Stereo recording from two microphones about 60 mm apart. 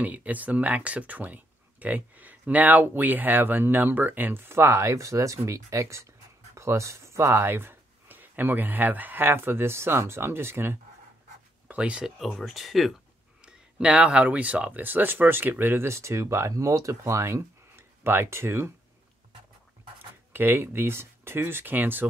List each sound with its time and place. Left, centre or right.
0.0 s speech: right
11.6 s speech: centre
12.2 s speech: centre
13.4 s speech: centre; by 15.9 s right
15.9 s speech: right
20.3 s speech: right